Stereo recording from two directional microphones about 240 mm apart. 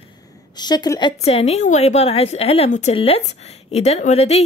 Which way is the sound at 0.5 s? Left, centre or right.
Centre.